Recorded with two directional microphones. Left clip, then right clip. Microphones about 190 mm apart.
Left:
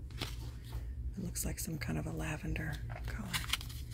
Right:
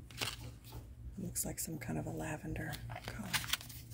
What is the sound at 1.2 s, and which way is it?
Speech, centre (ahead or behind).